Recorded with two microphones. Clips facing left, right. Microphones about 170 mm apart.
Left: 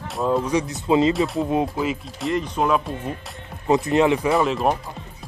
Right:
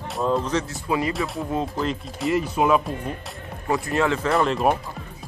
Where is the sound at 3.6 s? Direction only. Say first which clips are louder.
Left 5 dB; 20° left (ahead or behind).